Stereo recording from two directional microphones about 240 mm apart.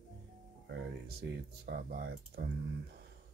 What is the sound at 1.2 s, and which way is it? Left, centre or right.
Speech, right.